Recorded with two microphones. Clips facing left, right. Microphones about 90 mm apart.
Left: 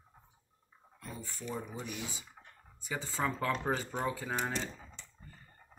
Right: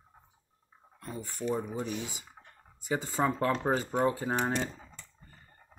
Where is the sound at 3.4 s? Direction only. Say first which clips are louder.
Right 4 dB; 35° right (ahead or behind).